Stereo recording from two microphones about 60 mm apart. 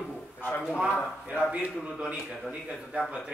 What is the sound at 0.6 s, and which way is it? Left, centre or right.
Speech, centre.